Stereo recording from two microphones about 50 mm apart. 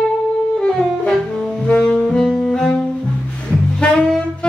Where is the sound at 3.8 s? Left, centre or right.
Centre.